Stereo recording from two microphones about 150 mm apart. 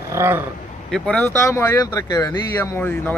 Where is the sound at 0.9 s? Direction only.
10° left (ahead or behind); by 2.6 s 25° left (ahead or behind).